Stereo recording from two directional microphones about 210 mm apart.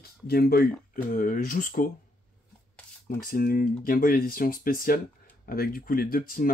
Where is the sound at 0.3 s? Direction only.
45° left (ahead or behind).